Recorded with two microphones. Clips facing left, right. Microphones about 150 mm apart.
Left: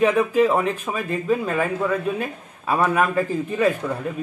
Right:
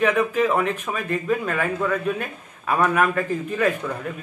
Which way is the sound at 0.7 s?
30° left (ahead or behind).